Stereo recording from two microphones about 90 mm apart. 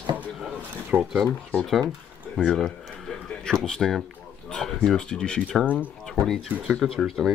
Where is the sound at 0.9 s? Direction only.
25° right (ahead or behind).